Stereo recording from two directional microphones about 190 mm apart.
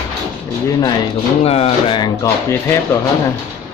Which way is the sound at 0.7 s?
20° left (ahead or behind).